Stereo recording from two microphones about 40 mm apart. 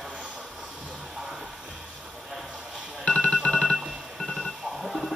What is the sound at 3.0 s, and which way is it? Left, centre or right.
Music, left.